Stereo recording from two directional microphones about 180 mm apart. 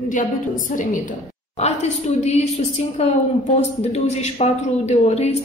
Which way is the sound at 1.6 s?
35° left (ahead or behind).